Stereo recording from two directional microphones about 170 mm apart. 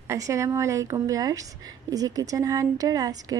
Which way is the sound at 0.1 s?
15° right (ahead or behind).